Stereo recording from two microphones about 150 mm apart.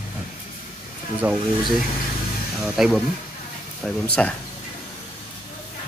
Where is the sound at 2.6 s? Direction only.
Centre (ahead or behind).